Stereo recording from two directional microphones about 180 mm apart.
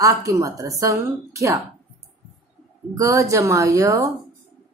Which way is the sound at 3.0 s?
20° right (ahead or behind).